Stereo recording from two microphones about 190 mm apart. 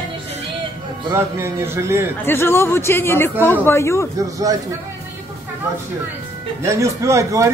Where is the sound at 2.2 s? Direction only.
10° left (ahead or behind).